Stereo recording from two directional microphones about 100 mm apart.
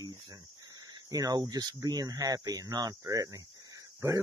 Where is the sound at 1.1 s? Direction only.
40° right (ahead or behind).